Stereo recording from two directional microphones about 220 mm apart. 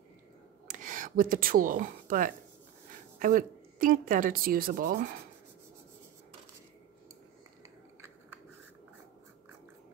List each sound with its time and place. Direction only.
0.7 s speech: 35° right (ahead or behind)